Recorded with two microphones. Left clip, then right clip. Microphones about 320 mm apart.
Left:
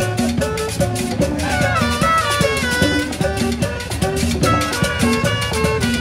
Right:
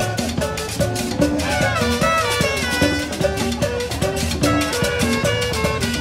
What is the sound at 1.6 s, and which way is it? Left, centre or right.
Music, centre.